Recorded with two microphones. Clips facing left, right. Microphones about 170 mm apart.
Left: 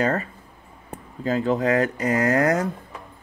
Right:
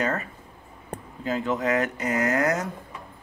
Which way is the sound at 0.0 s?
35° left (ahead or behind).